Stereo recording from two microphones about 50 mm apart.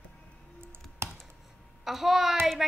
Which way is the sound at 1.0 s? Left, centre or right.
Right.